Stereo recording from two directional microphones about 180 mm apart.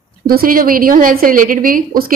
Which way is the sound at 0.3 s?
55° right (ahead or behind).